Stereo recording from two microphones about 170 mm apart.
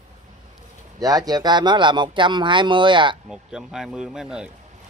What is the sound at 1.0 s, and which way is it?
Speech, 20° right (ahead or behind).